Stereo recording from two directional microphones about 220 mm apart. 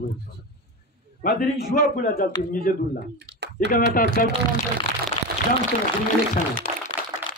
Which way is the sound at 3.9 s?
40° left (ahead or behind).